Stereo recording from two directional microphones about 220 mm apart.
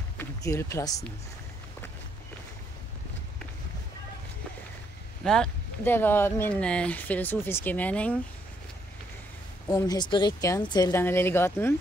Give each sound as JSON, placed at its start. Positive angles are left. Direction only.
{"t": 0.2, "sound": "speech", "side_deg": 10}
{"t": 5.2, "sound": "speech", "side_deg": 5}
{"t": 9.7, "sound": "speech", "side_deg": 15}